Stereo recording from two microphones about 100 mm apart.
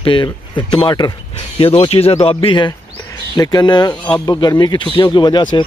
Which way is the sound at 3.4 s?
45° left (ahead or behind).